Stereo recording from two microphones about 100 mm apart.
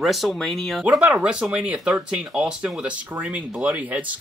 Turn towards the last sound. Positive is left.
turn(degrees=-15)  # may be behind; listen again after turning